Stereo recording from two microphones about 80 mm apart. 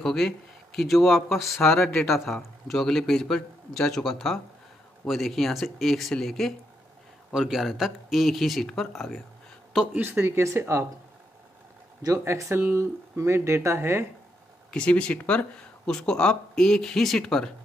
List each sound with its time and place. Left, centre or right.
0.0 s a man's voice: centre
1.7 s speech: left
2.0 s a man's voice: centre
9.9 s speech: right
12.0 s speech: right
14.7 s speech: centre